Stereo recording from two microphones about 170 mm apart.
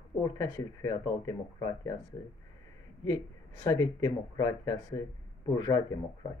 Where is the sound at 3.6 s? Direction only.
20° left (ahead or behind).